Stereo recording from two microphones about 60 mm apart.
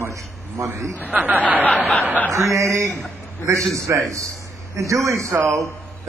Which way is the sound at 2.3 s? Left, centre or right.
Right.